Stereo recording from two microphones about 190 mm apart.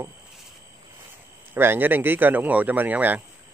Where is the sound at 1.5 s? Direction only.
10° right (ahead or behind).